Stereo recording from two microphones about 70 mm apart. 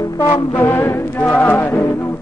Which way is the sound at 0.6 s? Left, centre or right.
Left.